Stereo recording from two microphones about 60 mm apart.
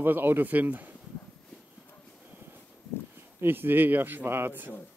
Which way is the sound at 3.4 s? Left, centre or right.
Right.